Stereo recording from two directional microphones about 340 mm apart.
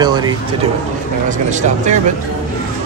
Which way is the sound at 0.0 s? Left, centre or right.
Centre.